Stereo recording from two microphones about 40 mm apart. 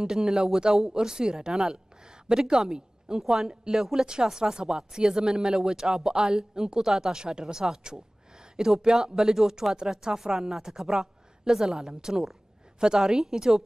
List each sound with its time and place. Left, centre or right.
0.0 s speech: centre